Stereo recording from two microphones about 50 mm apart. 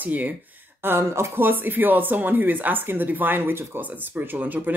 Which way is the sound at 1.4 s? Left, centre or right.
Right.